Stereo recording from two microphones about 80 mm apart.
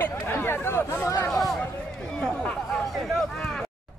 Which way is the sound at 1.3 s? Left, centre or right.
Centre.